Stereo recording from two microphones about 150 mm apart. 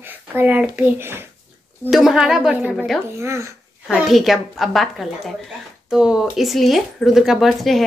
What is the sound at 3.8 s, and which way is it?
Speech, centre (ahead or behind).